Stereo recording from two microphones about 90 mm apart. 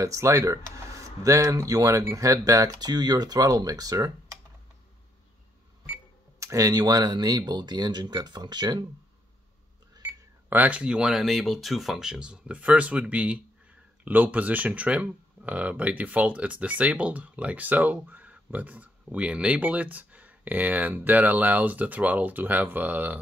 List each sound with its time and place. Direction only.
0.0 s speech: 35° right (ahead or behind)
6.4 s speech: 40° right (ahead or behind); by 8.8 s 55° right (ahead or behind)
10.0 s speech: 20° right (ahead or behind)